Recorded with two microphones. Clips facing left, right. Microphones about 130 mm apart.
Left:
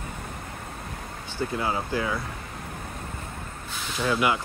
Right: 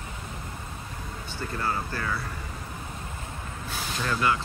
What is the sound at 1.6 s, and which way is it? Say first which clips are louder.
Speech: left 1 dB; 15° left (ahead or behind).